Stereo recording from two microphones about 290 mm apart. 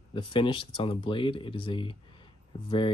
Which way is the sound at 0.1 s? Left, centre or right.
Centre.